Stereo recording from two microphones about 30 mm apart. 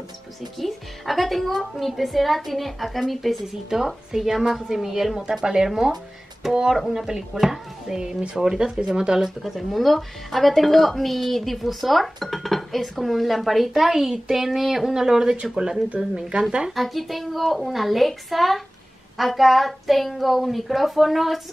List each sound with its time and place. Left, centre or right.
0.6 s a woman's voice: centre
5.3 s speech: right
6.4 s a woman's voice: centre
8.0 s speech: right
8.5 s speech: centre
9.4 s a woman's voice: centre; by 16.4 s right
16.7 s a woman's voice: centre